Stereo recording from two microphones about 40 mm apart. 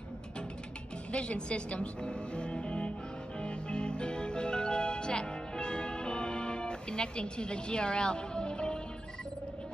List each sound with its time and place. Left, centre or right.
1.1 s speech: left
3.3 s music: left